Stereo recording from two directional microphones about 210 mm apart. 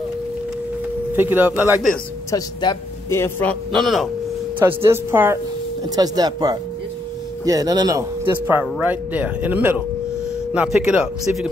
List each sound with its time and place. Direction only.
1.1 s speech: 10° right (ahead or behind)
2.3 s a man's voice: 20° left (ahead or behind); by 4.1 s centre (ahead or behind)
4.6 s speech: 10° right (ahead or behind)